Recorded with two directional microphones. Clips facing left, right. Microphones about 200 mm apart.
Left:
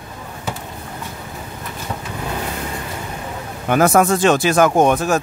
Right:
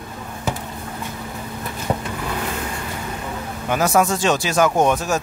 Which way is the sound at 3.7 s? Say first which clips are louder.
Left 4 dB; 55° left (ahead or behind).